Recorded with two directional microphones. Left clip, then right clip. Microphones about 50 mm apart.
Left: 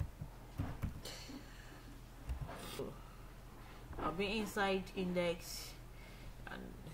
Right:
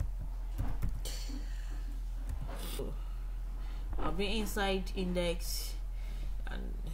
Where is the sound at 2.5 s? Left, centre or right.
Centre.